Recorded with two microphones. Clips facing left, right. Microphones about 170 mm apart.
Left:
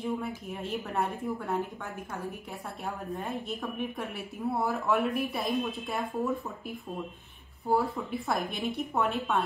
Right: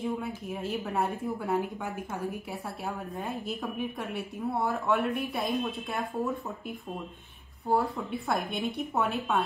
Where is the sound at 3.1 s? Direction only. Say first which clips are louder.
Even; centre (ahead or behind).